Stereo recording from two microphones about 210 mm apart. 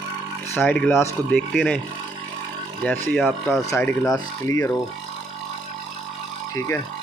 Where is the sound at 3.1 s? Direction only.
5° left (ahead or behind).